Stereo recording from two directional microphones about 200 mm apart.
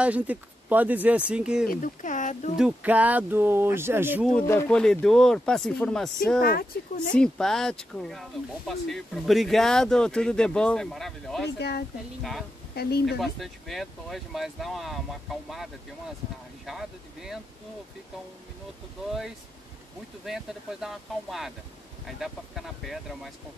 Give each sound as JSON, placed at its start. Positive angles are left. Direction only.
{"t": 0.0, "sound": "speech", "side_deg": -5}
{"t": 1.7, "sound": "speech", "side_deg": 40}
{"t": 2.5, "sound": "speech", "side_deg": -5}
{"t": 4.3, "sound": "speech", "side_deg": 10}
{"t": 11.5, "sound": "speech", "side_deg": 55}
{"t": 12.2, "sound": "speech", "side_deg": 0}
{"t": 20.2, "sound": "speech", "side_deg": 0}